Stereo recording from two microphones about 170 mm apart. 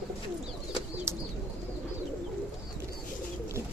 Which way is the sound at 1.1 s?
15° right (ahead or behind).